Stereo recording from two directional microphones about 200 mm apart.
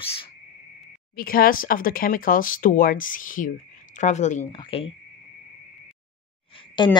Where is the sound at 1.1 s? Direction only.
45° left (ahead or behind); by 4.9 s 25° left (ahead or behind).